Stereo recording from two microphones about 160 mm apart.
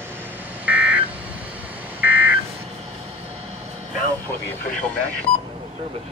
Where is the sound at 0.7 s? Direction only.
10° right (ahead or behind).